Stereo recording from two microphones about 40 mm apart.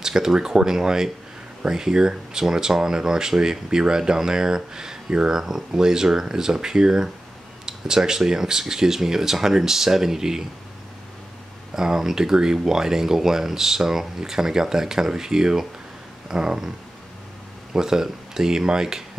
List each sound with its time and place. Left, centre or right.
0.0 s speech: centre
11.7 s speech: centre
17.7 s speech: centre